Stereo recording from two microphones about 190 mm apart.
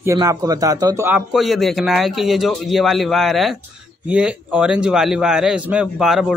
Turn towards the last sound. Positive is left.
turn(degrees=0)  # may be behind; listen again after turning